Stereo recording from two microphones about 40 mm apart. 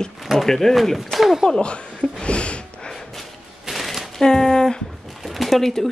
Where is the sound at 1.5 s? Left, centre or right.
Left.